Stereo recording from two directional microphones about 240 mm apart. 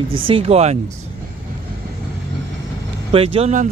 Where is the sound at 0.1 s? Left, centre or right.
Right.